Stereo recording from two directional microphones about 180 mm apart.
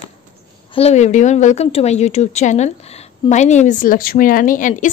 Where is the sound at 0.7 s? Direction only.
35° left (ahead or behind).